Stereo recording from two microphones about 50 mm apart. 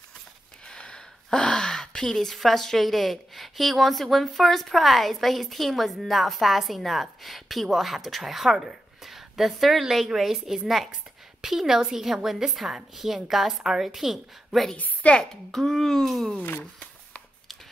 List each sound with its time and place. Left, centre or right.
0.7 s a sound: centre
2.1 s a woman's voice: centre
15.0 s a child's voice: left
15.5 s speech: centre